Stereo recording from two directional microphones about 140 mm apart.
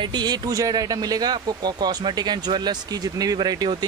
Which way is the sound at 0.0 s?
30° right (ahead or behind).